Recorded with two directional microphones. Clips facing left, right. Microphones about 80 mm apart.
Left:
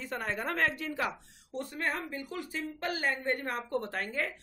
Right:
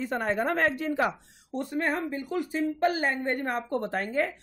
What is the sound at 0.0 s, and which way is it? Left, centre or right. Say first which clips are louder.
Speech: right 7 dB; right.